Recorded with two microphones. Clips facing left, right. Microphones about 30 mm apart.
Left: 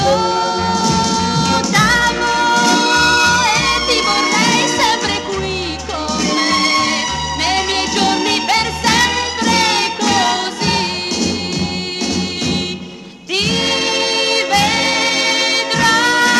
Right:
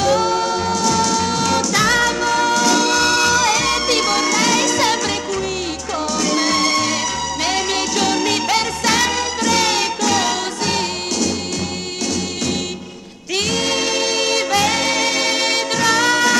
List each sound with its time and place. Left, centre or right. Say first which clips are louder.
0.0 s music: left 2 dB; left
6.2 s music: left 3 dB; left
13.4 s music: left 3 dB; left